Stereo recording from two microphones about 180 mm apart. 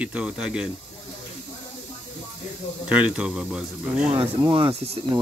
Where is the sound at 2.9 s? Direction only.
5° right (ahead or behind).